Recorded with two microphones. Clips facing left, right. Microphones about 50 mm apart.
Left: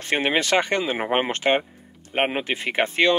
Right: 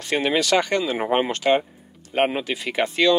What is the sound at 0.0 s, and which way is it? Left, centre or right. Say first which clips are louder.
Speech: even; left.